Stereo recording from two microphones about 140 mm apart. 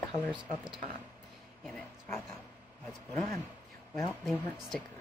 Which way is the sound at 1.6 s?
10° left (ahead or behind).